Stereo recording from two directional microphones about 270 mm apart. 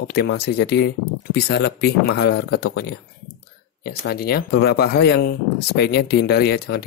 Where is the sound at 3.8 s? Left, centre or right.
Left.